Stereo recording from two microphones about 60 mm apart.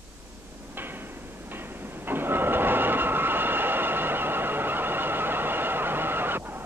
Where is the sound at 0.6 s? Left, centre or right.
Right.